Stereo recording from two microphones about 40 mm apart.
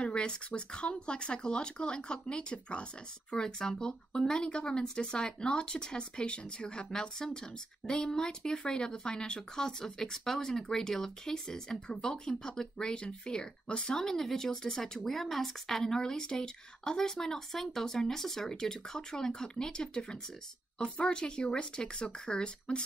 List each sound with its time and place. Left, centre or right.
0.0 s speech: left; by 15.8 s centre
15.8 s speech: centre